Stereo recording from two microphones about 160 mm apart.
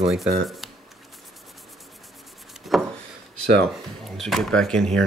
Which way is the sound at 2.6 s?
Centre (ahead or behind).